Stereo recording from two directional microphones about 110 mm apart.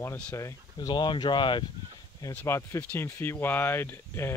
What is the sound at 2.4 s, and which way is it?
Speech, 25° left (ahead or behind).